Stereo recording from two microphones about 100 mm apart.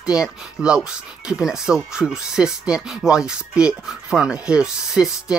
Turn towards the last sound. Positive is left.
turn(degrees=-10)  # may be behind; listen again after turning